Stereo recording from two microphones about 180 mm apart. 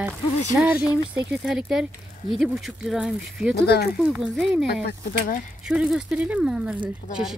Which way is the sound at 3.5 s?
60° left (ahead or behind).